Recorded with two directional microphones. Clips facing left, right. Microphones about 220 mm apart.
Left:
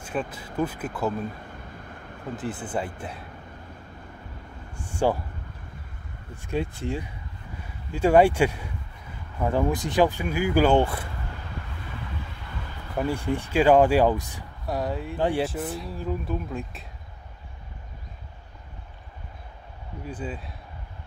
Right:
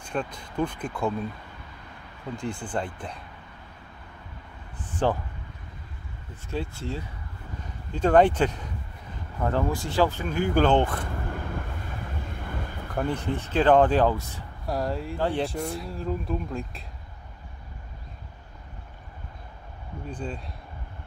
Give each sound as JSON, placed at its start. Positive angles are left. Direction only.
{"t": 0.0, "sound": "speech", "side_deg": 5}
{"t": 2.3, "sound": "speech", "side_deg": 5}
{"t": 4.8, "sound": "speech", "side_deg": 10}
{"t": 6.5, "sound": "speech", "side_deg": 15}
{"t": 12.9, "sound": "speech", "side_deg": 10}
{"t": 14.7, "sound": "speech", "side_deg": 0}
{"t": 15.1, "sound": "speech", "side_deg": 15}
{"t": 15.4, "sound": "speech", "side_deg": 0}
{"t": 20.1, "sound": "speech", "side_deg": 5}